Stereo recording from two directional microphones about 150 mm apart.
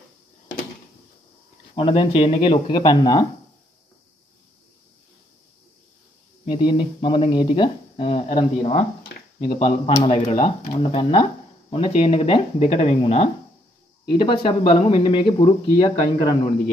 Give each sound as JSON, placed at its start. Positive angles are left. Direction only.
{"t": 1.8, "sound": "speech", "side_deg": 35}
{"t": 6.4, "sound": "speech", "side_deg": 30}
{"t": 9.4, "sound": "speech", "side_deg": 35}